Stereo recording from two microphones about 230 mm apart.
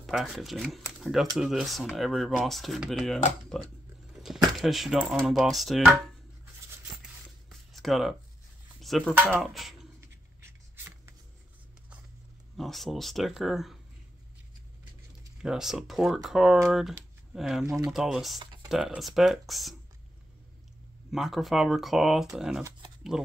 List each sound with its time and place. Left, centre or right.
0.0 s speech: centre
7.4 s a sound: centre
8.8 s speech: centre
12.5 s speech: centre
15.4 s speech: centre
18.4 s a sound: centre
18.7 s speech: centre
21.1 s speech: centre